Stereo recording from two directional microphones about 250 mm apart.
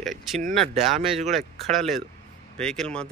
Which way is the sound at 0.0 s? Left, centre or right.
Centre.